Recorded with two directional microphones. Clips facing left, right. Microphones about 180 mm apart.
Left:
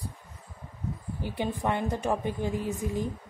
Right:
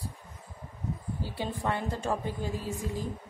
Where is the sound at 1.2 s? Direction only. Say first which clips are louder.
Left 6 dB; 15° left (ahead or behind).